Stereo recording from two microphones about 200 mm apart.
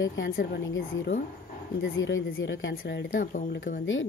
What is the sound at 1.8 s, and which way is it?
Speech, 70° left (ahead or behind).